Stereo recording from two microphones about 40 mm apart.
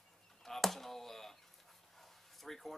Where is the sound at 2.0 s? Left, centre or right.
Centre.